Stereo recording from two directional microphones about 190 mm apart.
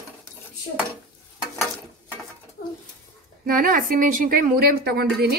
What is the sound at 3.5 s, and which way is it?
A woman's voice, 45° right (ahead or behind).